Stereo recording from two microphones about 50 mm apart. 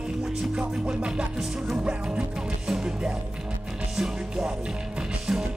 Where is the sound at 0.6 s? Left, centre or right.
Centre.